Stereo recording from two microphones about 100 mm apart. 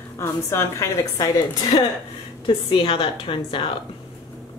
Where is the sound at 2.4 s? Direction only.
60° left (ahead or behind).